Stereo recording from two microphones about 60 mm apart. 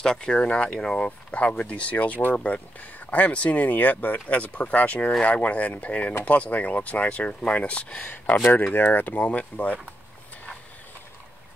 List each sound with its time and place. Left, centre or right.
0.0 s speech: centre